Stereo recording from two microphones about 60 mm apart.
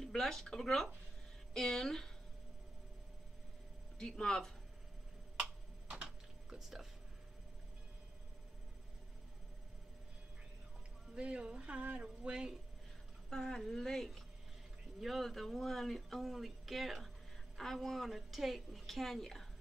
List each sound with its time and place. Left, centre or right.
0.0 s speech: centre
4.0 s speech: centre
5.9 s a sound: centre
11.1 s music: centre
13.3 s speech: centre